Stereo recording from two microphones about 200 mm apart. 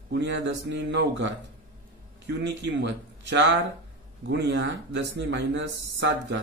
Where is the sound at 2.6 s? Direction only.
60° right (ahead or behind).